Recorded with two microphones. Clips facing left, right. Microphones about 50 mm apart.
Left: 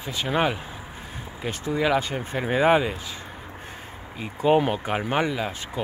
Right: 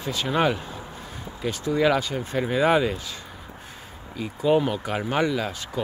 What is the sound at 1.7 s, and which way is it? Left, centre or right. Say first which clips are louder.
Speech: right 1 dB; centre.